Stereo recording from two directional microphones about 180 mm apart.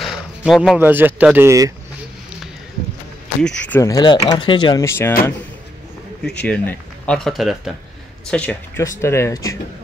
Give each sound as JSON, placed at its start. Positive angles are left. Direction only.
{"t": 0.0, "sound": "a sound", "side_deg": 0}
{"t": 0.7, "sound": "speech", "side_deg": -10}
{"t": 3.4, "sound": "speech", "side_deg": 5}
{"t": 3.9, "sound": "speech", "side_deg": 25}
{"t": 4.8, "sound": "speech", "side_deg": 15}
{"t": 6.2, "sound": "speech", "side_deg": 5}